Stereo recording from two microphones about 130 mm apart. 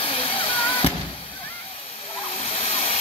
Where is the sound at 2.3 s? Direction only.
50° left (ahead or behind).